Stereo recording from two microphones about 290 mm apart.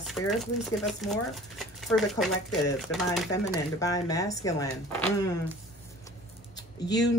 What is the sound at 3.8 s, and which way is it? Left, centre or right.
Speech, centre.